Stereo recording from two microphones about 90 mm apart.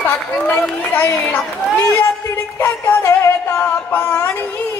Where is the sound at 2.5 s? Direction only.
30° left (ahead or behind).